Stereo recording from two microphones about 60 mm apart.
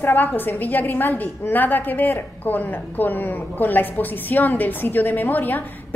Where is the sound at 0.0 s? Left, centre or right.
Left.